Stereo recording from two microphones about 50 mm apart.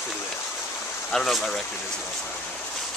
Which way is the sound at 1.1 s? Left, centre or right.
Centre.